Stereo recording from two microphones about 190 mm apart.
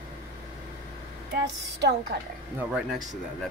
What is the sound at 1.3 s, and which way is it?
Speech, 60° right (ahead or behind).